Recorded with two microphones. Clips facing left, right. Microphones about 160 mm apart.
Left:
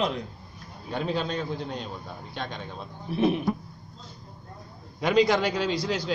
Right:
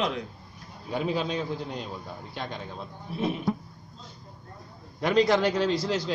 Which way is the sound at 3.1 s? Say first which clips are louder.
Left 6 dB; 70° left (ahead or behind).